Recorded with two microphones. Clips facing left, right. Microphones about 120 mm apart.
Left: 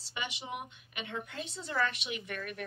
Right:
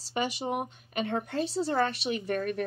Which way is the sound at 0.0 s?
40° right (ahead or behind).